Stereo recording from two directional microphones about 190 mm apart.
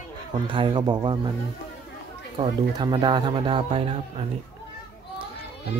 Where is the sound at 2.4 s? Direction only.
25° right (ahead or behind).